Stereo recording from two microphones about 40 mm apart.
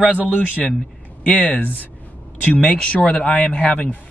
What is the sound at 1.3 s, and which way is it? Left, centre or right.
Speech, left.